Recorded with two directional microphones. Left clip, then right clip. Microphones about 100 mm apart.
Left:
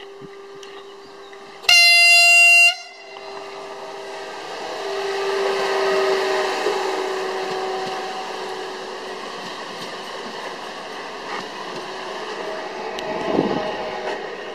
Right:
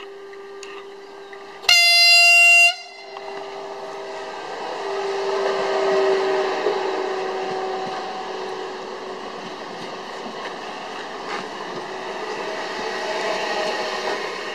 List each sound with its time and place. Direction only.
1.7 s air horn: 5° left (ahead or behind)
4.4 s vehicle: 20° left (ahead or behind)
12.8 s train: 40° right (ahead or behind)